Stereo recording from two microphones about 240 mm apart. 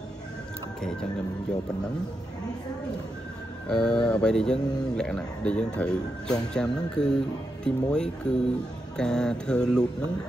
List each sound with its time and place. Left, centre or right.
3.6 s speech: centre